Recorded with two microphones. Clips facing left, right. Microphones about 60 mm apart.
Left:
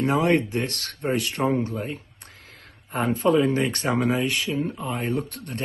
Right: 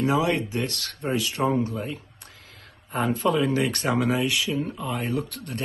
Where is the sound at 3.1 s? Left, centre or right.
Left.